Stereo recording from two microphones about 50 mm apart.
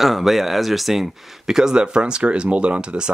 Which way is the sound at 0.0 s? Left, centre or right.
Centre.